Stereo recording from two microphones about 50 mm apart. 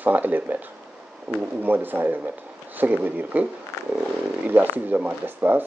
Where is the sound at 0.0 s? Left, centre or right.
Right.